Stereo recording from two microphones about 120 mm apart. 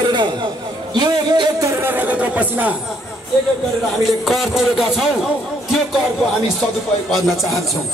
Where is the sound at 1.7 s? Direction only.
20° right (ahead or behind).